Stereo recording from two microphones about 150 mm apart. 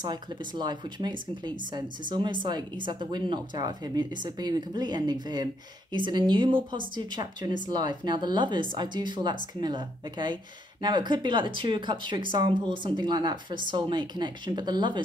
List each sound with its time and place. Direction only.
0.0 s speech: 30° right (ahead or behind)